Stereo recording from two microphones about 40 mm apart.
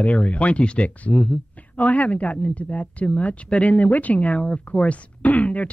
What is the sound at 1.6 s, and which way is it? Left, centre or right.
Speech, left.